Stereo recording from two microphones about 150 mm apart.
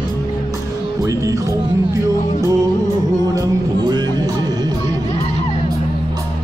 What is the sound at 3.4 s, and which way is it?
Music, 25° right (ahead or behind).